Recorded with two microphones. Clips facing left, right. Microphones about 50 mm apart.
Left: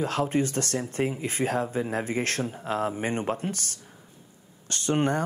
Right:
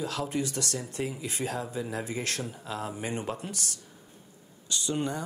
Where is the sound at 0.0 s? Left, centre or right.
Left.